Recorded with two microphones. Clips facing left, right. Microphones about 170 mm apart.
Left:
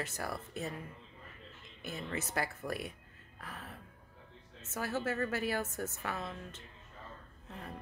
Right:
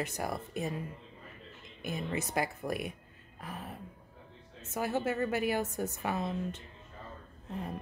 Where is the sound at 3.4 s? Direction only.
15° right (ahead or behind).